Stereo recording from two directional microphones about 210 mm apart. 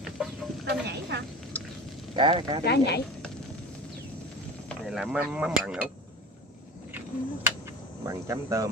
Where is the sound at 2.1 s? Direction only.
20° right (ahead or behind).